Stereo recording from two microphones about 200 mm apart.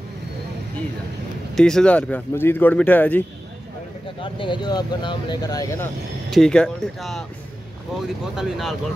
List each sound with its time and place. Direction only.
1.5 s speech: 5° left (ahead or behind)
4.2 s speech: 25° left (ahead or behind)
6.3 s speech: 5° left (ahead or behind)
8.4 s speech: centre (ahead or behind)